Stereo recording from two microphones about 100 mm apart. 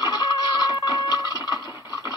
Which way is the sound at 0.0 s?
45° left (ahead or behind).